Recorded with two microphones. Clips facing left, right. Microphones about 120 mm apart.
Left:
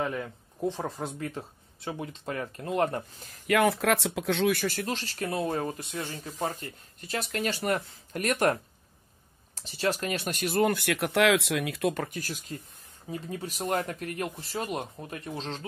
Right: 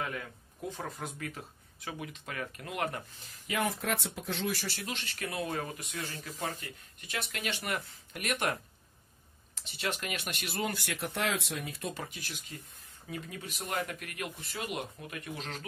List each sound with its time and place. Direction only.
0.0 s speech: 30° left (ahead or behind)
3.4 s speech: 65° left (ahead or behind); by 8.5 s 40° left (ahead or behind)
9.6 s speech: 35° left (ahead or behind)